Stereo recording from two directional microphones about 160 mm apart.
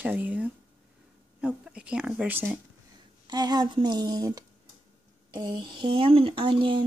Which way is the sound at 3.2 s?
25° right (ahead or behind).